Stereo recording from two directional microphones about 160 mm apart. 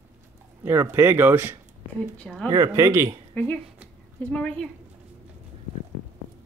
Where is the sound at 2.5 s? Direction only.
20° right (ahead or behind).